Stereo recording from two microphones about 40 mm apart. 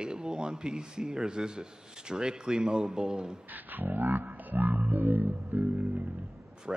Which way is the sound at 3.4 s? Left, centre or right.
Right.